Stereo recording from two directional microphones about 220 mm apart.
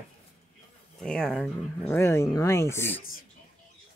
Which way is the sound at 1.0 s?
5° left (ahead or behind).